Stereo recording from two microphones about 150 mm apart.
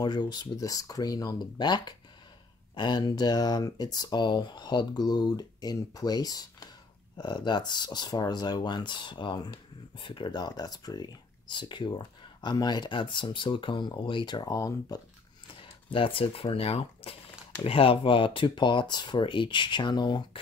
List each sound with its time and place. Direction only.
0.0 s speech: 30° left (ahead or behind)
15.4 s speech: 35° left (ahead or behind)